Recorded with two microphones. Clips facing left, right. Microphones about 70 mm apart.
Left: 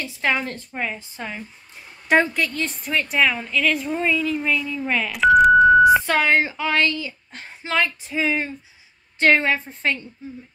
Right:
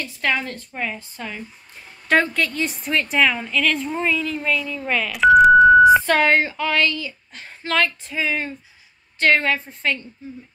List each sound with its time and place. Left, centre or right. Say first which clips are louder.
0.0 s a woman's voice: even; left
2.3 s a woman's voice: right 1 dB; centre
6.3 s speech: even; centre
8.2 s a woman's voice: left 1 dB; centre